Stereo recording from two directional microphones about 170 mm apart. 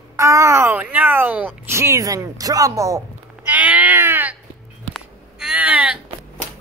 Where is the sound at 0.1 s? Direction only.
20° right (ahead or behind).